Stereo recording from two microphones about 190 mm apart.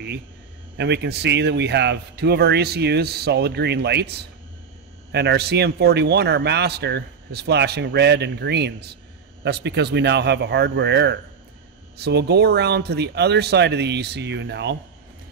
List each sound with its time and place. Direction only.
0.7 s a man's voice: 60° right (ahead or behind)